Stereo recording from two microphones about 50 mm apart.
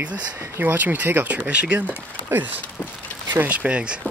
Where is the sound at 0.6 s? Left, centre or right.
Right.